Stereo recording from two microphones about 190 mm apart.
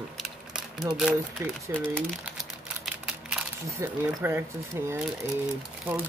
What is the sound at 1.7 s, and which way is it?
Speech, 15° right (ahead or behind).